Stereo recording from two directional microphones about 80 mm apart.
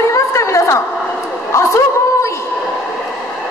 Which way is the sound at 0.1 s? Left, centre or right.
Left.